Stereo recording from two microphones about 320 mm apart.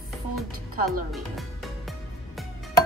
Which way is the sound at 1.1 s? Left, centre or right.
Centre.